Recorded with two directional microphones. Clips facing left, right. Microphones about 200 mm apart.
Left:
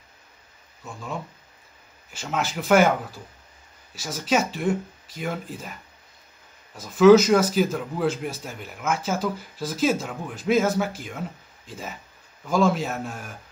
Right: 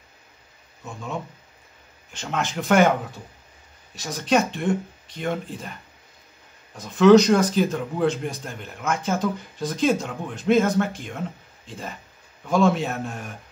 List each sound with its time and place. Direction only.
2.1 s speech: 5° left (ahead or behind)
6.8 s speech: 5° left (ahead or behind)
12.4 s speech: centre (ahead or behind)